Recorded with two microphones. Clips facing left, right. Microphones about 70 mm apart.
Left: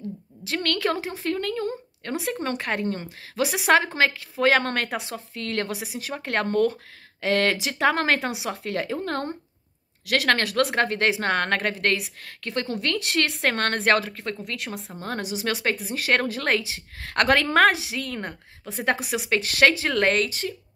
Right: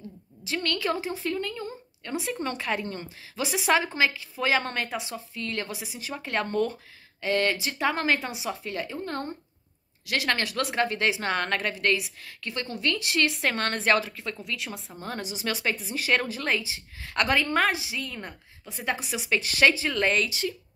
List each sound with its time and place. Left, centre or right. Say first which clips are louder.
0.4 s a woman's voice: left 3 dB; left
7.2 s speech: left 3 dB; left
10.0 s a woman's voice: left 5 dB; left